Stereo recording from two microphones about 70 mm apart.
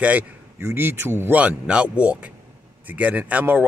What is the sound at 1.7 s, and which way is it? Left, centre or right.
Speech, centre.